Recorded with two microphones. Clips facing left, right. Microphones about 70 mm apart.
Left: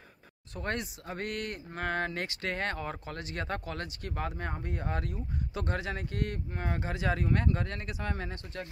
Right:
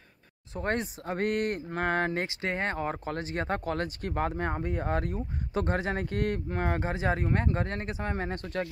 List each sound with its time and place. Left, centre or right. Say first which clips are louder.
0.6 s speech: right 5 dB; right
3.6 s speech: right 7 dB; right
6.6 s speech: right 3 dB; right
8.3 s speech: right 8 dB; right